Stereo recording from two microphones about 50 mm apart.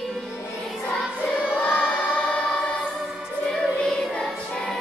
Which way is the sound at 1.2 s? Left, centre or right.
Left.